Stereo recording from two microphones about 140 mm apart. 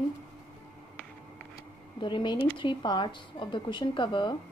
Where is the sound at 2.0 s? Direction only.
35° left (ahead or behind).